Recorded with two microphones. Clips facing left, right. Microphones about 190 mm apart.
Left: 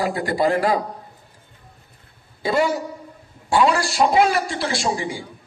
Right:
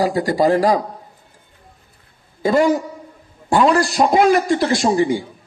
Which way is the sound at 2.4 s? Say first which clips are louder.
Right 5 dB; 45° right (ahead or behind).